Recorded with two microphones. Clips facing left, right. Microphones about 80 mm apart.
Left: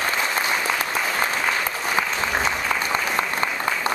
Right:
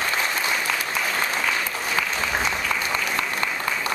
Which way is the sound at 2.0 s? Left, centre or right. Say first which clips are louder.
Left 2 dB; left.